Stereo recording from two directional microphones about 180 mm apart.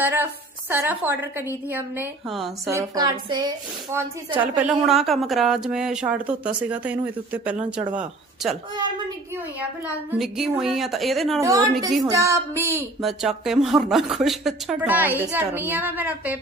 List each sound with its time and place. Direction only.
0.0 s a woman's voice: 10° right (ahead or behind)
2.3 s speech: centre (ahead or behind)
2.7 s a woman's voice: 20° right (ahead or behind)
4.6 s speech: centre (ahead or behind)
9.6 s speech: 5° right (ahead or behind)
11.4 s a woman's voice: 20° right (ahead or behind)
13.0 s a woman's voice: centre (ahead or behind)